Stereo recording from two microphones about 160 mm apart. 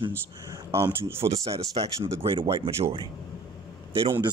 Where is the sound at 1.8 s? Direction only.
35° right (ahead or behind).